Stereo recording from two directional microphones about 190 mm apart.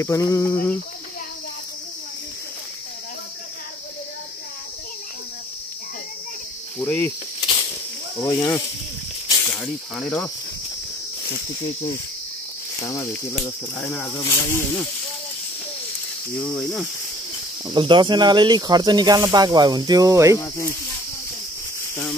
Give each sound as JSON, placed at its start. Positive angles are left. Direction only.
{"t": 0.0, "sound": "speech", "side_deg": 15}
{"t": 6.8, "sound": "speech", "side_deg": 10}
{"t": 7.3, "sound": "snake", "side_deg": 25}
{"t": 8.2, "sound": "speech", "side_deg": 15}
{"t": 9.5, "sound": "speech", "side_deg": 5}
{"t": 12.8, "sound": "speech", "side_deg": 15}
{"t": 16.3, "sound": "speech", "side_deg": 5}
{"t": 17.7, "sound": "speech", "side_deg": -25}